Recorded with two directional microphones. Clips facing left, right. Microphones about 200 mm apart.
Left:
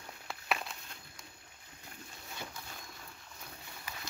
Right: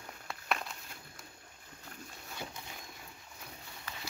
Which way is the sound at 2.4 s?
15° right (ahead or behind).